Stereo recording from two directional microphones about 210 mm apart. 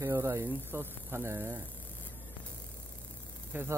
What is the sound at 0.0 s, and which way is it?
Speech, 15° right (ahead or behind).